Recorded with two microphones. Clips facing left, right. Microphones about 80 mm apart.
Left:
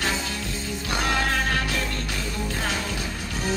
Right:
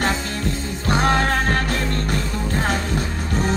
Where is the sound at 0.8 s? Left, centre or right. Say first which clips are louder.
Right 7 dB; right.